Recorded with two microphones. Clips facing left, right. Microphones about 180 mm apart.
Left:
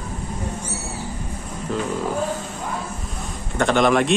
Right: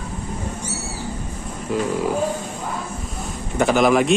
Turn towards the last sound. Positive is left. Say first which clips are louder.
# right 1 dB
turn(degrees=-5)  # may be behind; listen again after turning